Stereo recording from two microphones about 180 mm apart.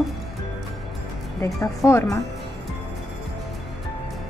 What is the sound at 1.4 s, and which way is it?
Speech, 15° left (ahead or behind).